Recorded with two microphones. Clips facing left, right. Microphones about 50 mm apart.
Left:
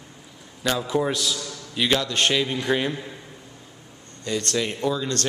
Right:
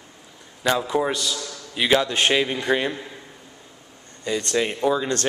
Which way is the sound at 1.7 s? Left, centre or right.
Centre.